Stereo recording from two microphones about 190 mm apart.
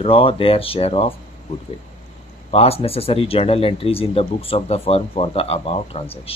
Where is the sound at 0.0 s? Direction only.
30° left (ahead or behind).